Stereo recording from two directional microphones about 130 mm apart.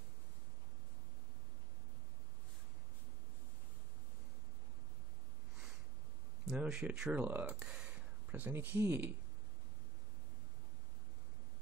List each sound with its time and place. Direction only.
6.4 s speech: 5° right (ahead or behind)